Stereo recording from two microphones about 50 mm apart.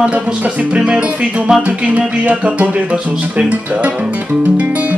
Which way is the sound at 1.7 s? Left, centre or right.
Right.